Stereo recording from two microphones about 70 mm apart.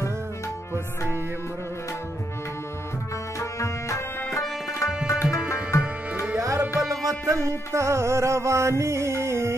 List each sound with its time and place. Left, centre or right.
3.3 s tabla: left
6.3 s tabla: right
7.1 s music: right